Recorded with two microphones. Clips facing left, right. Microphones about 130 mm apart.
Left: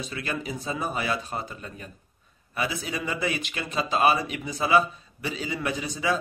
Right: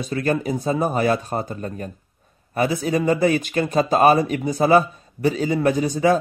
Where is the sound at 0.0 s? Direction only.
45° right (ahead or behind).